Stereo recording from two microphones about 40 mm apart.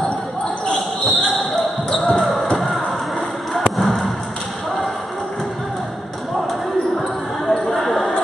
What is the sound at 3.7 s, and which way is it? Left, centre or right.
Thump, centre.